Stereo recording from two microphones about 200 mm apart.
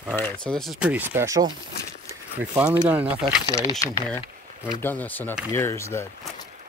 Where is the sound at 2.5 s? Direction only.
10° right (ahead or behind).